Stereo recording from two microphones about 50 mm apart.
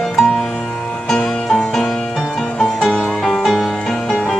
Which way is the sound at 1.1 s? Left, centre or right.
Centre.